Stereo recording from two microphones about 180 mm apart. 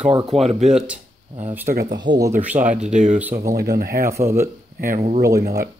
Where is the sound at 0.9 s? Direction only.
45° right (ahead or behind).